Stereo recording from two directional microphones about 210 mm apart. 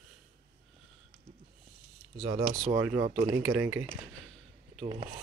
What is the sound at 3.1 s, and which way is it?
Speech, 25° right (ahead or behind).